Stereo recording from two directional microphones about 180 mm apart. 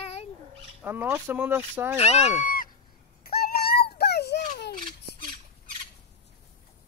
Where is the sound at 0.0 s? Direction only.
35° left (ahead or behind).